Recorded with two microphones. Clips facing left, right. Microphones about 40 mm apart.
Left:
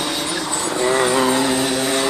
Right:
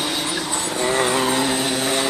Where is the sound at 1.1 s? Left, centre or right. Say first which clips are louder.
Left 3 dB; centre.